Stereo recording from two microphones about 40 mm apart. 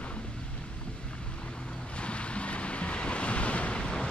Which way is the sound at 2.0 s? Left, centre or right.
Left.